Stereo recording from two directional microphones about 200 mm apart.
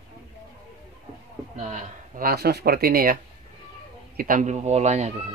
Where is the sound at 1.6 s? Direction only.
35° right (ahead or behind).